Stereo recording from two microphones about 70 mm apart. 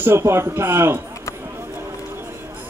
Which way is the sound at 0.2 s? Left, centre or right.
Right.